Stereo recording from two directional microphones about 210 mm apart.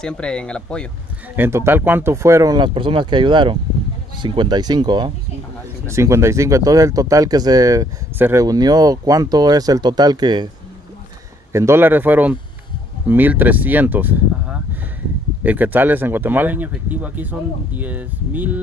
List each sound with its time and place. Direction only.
0.0 s speech: 5° left (ahead or behind)
1.3 s speech: 10° right (ahead or behind)
11.5 s speech: 10° right (ahead or behind)